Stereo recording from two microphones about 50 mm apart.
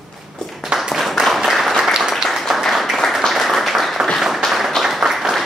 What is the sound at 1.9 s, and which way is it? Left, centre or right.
Applause, centre.